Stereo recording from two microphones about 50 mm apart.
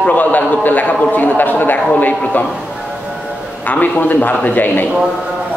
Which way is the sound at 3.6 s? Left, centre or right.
Left.